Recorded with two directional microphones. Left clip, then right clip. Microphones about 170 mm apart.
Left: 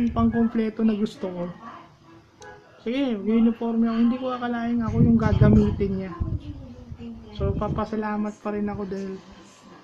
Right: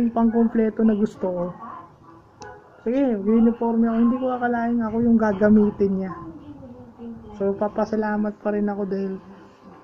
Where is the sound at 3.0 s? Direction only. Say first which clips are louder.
Right 3 dB; 15° left (ahead or behind).